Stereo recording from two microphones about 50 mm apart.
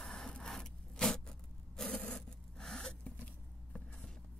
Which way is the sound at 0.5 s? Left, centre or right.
Centre.